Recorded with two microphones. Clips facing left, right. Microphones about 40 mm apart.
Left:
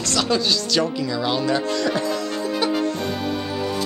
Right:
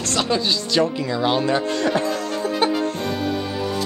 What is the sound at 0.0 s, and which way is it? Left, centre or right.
Speech, right.